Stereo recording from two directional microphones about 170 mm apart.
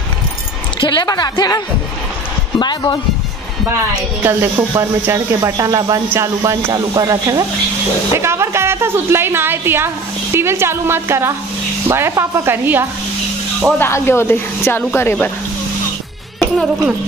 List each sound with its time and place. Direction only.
0.7 s a woman's voice: 25° left (ahead or behind)
4.2 s speech: 15° right (ahead or behind)
13.7 s a woman's voice: 15° left (ahead or behind)
16.3 s music: centre (ahead or behind)